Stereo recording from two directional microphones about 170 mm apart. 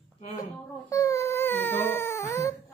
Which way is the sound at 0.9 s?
20° left (ahead or behind).